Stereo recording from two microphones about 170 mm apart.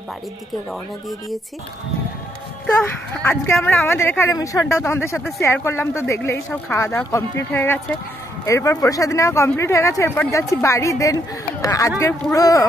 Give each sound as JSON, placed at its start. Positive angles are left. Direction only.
{"t": 2.6, "sound": "speech", "side_deg": 10}
{"t": 3.8, "sound": "speech", "side_deg": 15}